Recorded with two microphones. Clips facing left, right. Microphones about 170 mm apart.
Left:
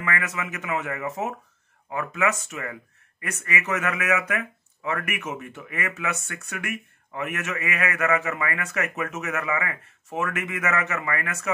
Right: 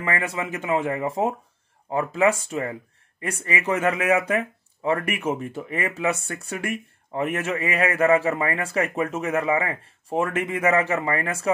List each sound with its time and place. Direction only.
0.0 s speech: 30° right (ahead or behind)